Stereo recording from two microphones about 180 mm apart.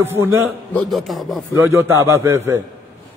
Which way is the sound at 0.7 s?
Centre (ahead or behind).